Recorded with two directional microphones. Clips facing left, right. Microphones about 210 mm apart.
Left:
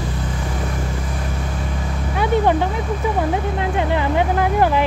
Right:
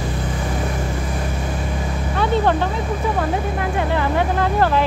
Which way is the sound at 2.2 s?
15° left (ahead or behind).